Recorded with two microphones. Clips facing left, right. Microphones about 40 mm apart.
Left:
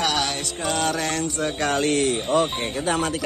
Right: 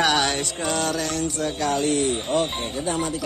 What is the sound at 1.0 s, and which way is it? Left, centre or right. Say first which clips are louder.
Music: left 1 dB; left.